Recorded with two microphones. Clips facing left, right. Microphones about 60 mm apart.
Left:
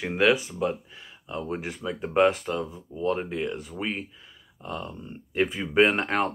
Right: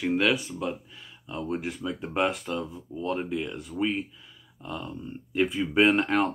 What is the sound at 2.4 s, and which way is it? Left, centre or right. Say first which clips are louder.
Speech: left 2 dB; centre.